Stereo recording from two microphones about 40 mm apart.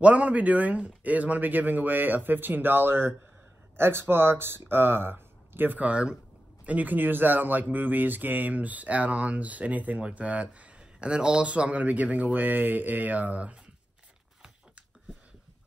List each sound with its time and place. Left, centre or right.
0.0 s speech: right
5.8 s speech: right